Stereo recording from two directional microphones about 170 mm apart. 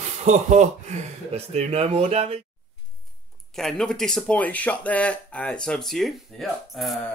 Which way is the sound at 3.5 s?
Centre (ahead or behind).